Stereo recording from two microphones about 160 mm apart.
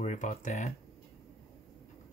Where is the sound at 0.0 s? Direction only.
50° left (ahead or behind).